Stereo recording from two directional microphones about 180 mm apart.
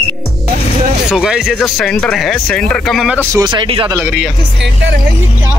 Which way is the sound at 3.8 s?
10° right (ahead or behind).